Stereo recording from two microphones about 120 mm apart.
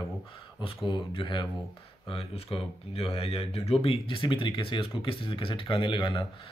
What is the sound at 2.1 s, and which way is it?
Speech, 55° left (ahead or behind).